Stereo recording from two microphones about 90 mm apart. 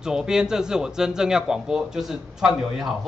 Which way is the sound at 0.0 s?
5° right (ahead or behind).